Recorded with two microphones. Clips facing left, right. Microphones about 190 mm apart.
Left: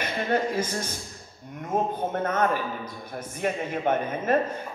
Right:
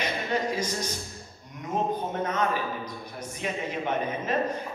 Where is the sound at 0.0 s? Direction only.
55° left (ahead or behind).